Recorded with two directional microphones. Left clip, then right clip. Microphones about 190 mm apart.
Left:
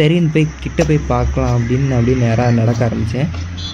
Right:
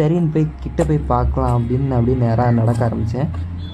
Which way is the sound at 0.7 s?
25° left (ahead or behind).